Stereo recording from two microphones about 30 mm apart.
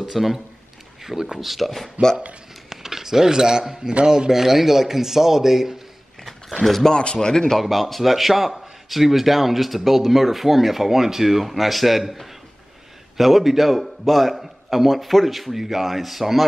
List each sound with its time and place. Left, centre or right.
0.0 s speech: centre
1.4 s a man's voice: centre
1.7 s speech: centre
2.7 s a sound: centre
4.0 s a man's voice: right
4.3 s speech: centre
6.6 s a man's voice: centre
6.9 s speech: left
7.2 s speech: left
7.7 s a man's voice: centre